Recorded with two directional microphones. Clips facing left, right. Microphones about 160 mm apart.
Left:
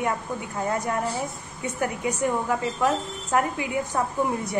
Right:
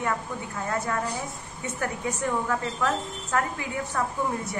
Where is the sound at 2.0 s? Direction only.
15° left (ahead or behind).